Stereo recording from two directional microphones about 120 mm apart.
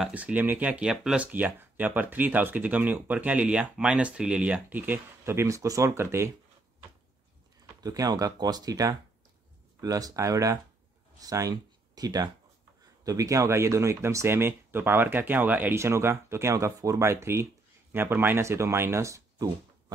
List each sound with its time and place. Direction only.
0.0 s speech: 15° right (ahead or behind)
7.8 s speech: 30° right (ahead or behind)